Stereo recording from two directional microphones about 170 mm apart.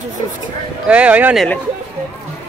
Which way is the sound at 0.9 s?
10° right (ahead or behind).